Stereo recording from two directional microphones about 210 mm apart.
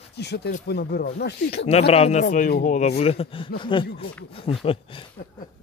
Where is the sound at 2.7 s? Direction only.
30° left (ahead or behind).